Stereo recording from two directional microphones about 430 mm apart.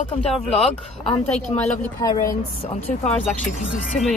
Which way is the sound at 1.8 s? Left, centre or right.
Centre.